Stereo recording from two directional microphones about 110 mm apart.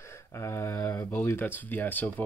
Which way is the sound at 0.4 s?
30° left (ahead or behind).